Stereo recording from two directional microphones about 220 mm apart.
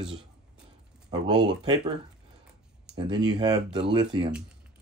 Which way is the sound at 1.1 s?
20° right (ahead or behind).